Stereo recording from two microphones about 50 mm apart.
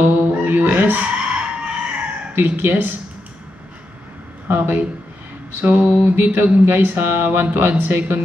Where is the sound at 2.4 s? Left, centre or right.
Right.